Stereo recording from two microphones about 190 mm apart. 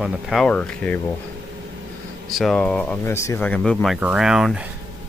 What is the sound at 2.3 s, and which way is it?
Speech, centre (ahead or behind).